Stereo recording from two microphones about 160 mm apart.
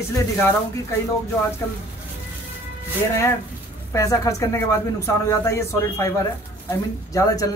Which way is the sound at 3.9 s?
20° left (ahead or behind).